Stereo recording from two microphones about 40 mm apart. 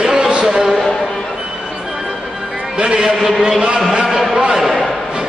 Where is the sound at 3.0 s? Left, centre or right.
Centre.